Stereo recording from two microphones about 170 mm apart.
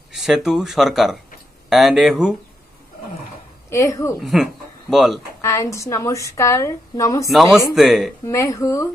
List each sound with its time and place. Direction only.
0.1 s speech: centre (ahead or behind)
3.7 s a woman's voice: 15° left (ahead or behind)
4.2 s speech: centre (ahead or behind)
5.4 s a woman's voice: 15° left (ahead or behind)
7.2 s speech: centre (ahead or behind)
8.3 s a woman's voice: 15° left (ahead or behind)